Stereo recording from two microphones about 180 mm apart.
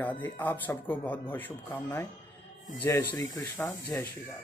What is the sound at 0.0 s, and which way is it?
Speech, 10° left (ahead or behind).